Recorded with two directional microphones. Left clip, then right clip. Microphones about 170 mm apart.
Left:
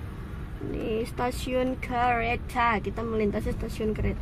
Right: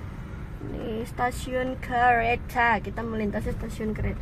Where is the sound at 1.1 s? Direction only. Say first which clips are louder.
Right 5 dB; 5° left (ahead or behind).